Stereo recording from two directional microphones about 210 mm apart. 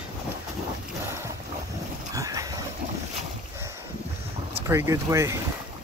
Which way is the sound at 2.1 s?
15° right (ahead or behind).